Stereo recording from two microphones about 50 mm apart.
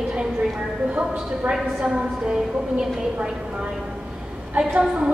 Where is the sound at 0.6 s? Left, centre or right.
Centre.